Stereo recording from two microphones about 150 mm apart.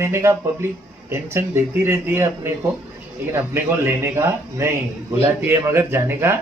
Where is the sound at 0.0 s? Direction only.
20° right (ahead or behind).